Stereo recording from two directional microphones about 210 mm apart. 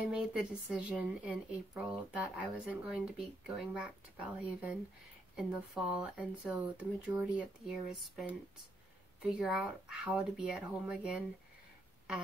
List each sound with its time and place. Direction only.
0.1 s speech: 5° right (ahead or behind)